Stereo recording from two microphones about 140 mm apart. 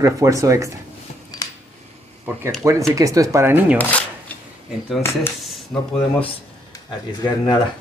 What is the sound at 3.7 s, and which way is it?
Speech, 10° left (ahead or behind).